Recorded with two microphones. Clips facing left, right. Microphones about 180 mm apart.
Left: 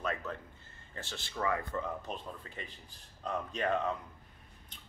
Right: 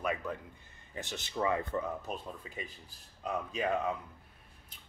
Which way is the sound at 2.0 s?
10° right (ahead or behind).